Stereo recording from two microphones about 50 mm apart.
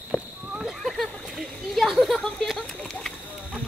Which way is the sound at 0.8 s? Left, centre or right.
Centre.